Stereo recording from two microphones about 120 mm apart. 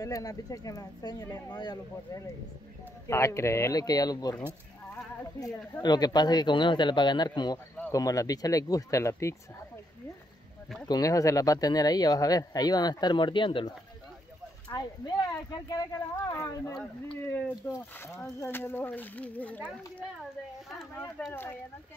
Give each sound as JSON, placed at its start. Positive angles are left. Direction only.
{"t": 0.0, "sound": "speech", "side_deg": 30}
{"t": 3.1, "sound": "speech", "side_deg": 25}
{"t": 4.9, "sound": "a sound", "side_deg": 25}
{"t": 5.8, "sound": "speech", "side_deg": 35}
{"t": 7.5, "sound": "speech", "side_deg": 15}
{"t": 7.9, "sound": "speech", "side_deg": 30}
{"t": 10.9, "sound": "speech", "side_deg": 30}
{"t": 16.3, "sound": "speech", "side_deg": 20}
{"t": 17.9, "sound": "speech", "side_deg": 20}
{"t": 21.3, "sound": "speech", "side_deg": 20}